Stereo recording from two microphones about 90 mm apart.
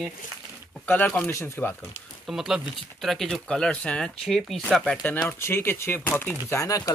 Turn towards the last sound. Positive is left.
turn(degrees=35)  # may be behind; listen again after turning